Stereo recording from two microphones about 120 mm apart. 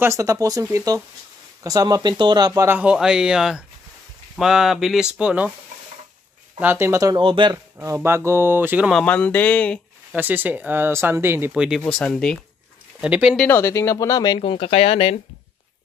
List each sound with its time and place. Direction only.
0.0 s speech: 25° right (ahead or behind)
2.6 s speech: 15° right (ahead or behind)
6.6 s speech: 20° right (ahead or behind)
7.2 s speech: 45° right (ahead or behind)
7.5 s speech: 25° right (ahead or behind)
9.0 s speech: 10° left (ahead or behind)
10.1 s speech: 15° right (ahead or behind)
11.5 s speech: 5° right (ahead or behind)
12.0 s speech: 5° left (ahead or behind)
13.0 s speech: 5° right (ahead or behind)
13.5 s speech: 20° left (ahead or behind)
14.4 s speech: 50° left (ahead or behind)